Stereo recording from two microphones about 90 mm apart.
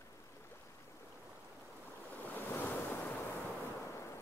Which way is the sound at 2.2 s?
20° left (ahead or behind).